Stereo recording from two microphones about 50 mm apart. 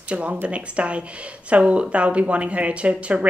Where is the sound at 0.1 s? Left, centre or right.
Right.